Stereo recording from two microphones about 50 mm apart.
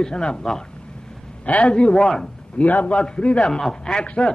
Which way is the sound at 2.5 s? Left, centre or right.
Left.